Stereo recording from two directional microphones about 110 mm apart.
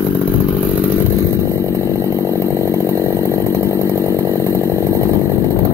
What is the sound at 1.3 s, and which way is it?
Chainsaw, 25° right (ahead or behind).